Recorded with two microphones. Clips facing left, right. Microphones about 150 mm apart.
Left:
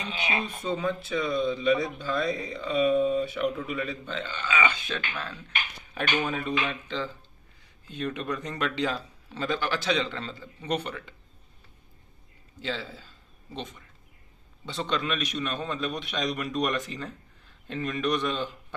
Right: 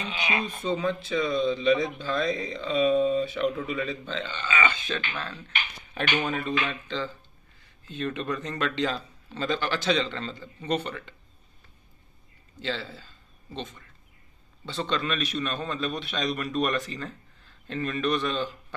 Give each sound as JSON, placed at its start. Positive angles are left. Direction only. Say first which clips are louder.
{"t": 0.1, "sound": "speech", "louder": "right 1 dB", "side_deg": 35}
{"t": 0.5, "sound": "a man's voice", "louder": "right 2 dB", "side_deg": 10}
{"t": 6.2, "sound": "a man's voice", "louder": "right 1 dB", "side_deg": 10}
{"t": 12.6, "sound": "speech", "louder": "right 1 dB", "side_deg": 10}
{"t": 14.8, "sound": "a man's voice", "louder": "right 1 dB", "side_deg": 5}